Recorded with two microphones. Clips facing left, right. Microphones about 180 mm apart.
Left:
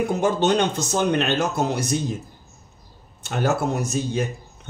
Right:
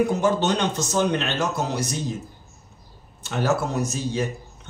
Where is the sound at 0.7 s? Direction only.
55° left (ahead or behind).